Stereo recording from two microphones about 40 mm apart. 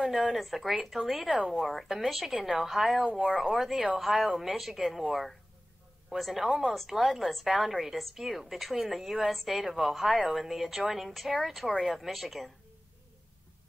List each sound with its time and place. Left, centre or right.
0.0 s a woman's voice: centre
3.1 s speech: right
3.5 s a woman's voice: centre
6.0 s a woman's voice: centre